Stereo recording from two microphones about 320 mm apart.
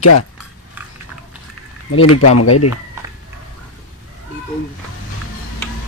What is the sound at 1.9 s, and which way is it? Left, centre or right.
Speech, left.